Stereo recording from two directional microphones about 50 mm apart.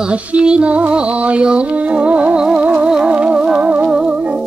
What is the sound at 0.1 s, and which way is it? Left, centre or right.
Music, right.